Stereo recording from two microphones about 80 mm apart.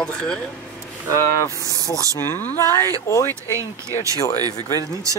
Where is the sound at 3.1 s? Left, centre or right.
Left.